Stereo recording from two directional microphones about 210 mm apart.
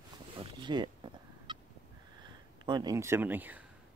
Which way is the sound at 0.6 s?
20° right (ahead or behind).